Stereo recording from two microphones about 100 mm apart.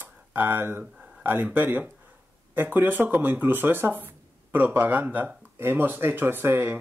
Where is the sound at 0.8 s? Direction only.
10° right (ahead or behind).